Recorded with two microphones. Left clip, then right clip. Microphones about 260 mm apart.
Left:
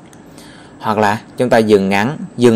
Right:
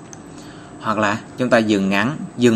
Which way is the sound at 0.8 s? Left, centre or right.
Left.